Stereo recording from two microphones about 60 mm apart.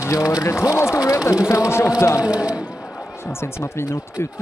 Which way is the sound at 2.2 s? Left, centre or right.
Centre.